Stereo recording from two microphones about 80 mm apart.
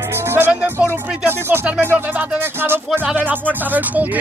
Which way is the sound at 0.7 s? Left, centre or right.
Right.